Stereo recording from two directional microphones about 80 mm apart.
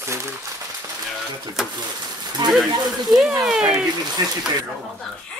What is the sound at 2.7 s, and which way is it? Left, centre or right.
Speech, right.